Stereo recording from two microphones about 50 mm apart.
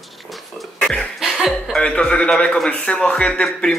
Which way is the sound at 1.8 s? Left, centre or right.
Left.